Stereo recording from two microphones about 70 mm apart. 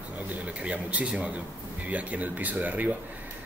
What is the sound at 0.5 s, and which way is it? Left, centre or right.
Speech, centre.